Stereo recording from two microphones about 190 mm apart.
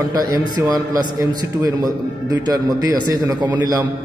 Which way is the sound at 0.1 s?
20° right (ahead or behind).